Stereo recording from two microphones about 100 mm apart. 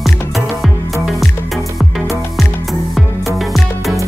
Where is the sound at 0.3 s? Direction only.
Centre (ahead or behind).